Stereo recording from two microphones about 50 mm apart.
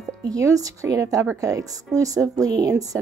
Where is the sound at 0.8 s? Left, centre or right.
Right.